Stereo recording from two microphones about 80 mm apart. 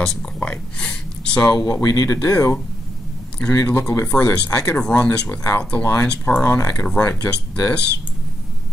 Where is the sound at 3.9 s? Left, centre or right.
Left.